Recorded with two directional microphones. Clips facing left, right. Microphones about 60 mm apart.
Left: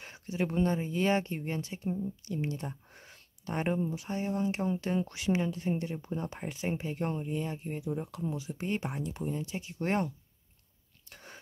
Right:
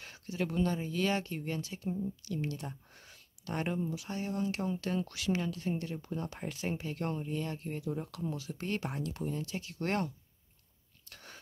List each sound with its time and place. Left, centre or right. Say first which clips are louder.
0.0 s speech: left 3 dB; left
11.1 s whispering: left 2 dB; left